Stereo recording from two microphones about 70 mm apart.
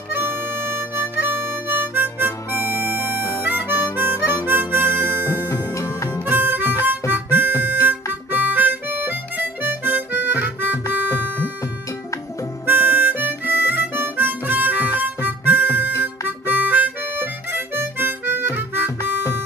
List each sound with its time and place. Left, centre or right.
0.1 s harmonica: right
5.5 s music: left
6.2 s harmonica: right
12.6 s harmonica: right